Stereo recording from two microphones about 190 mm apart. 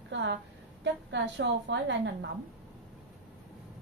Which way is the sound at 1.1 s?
70° right (ahead or behind).